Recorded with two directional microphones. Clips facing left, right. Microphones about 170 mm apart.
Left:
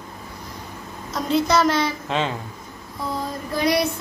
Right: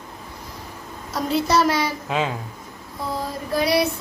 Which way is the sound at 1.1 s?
5° right (ahead or behind).